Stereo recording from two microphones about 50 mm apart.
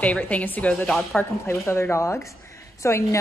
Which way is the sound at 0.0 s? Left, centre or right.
Left.